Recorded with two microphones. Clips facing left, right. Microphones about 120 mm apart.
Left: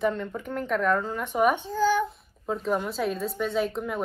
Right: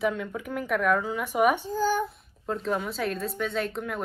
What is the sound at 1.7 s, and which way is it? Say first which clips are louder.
Speech: left 2 dB; 40° right (ahead or behind).